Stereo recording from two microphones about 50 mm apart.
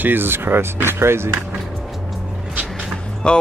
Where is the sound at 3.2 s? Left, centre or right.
Centre.